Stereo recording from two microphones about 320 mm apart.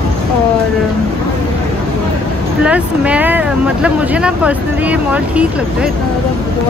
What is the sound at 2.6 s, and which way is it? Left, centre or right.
Speech, centre.